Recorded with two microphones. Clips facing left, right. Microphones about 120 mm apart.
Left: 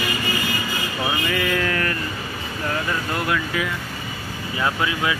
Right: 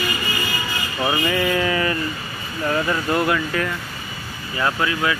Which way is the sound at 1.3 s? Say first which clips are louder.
Right 2 dB; 5° right (ahead or behind).